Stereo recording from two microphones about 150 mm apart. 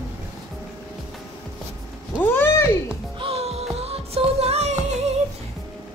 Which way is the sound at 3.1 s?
40° right (ahead or behind).